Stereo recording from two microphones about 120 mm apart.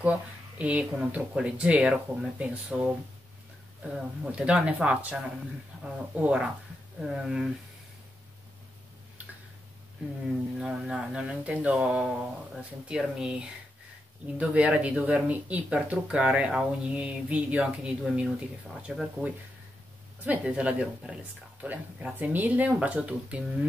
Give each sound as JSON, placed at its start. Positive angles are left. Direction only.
{"t": 0.0, "sound": "speech", "side_deg": -10}
{"t": 5.7, "sound": "a sound", "side_deg": 0}
{"t": 6.1, "sound": "speech", "side_deg": -10}
{"t": 10.6, "sound": "speech", "side_deg": -5}